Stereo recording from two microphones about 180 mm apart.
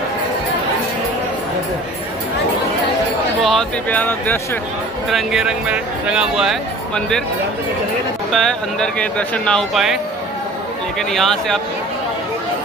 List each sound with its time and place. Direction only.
3.4 s speech: 5° left (ahead or behind)
5.1 s speech: 5° right (ahead or behind)
8.3 s speech: centre (ahead or behind)
11.0 s speech: centre (ahead or behind)